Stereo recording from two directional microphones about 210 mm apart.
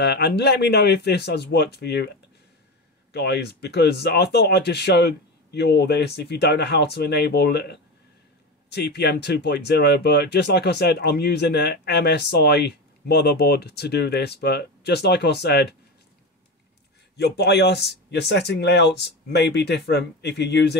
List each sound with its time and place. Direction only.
0.0 s speech: 50° left (ahead or behind)
3.1 s speech: 50° left (ahead or behind)
17.2 s speech: 50° left (ahead or behind)